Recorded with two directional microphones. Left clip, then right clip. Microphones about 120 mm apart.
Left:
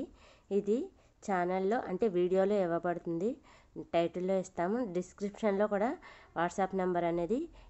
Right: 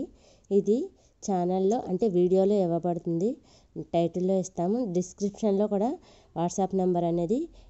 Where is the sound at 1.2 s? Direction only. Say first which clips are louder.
Right 5 dB; 40° right (ahead or behind).